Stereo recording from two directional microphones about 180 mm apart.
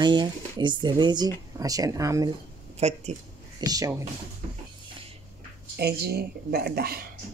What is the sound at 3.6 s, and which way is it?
Speech, 20° right (ahead or behind).